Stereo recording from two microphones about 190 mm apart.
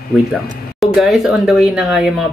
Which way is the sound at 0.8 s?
Centre (ahead or behind).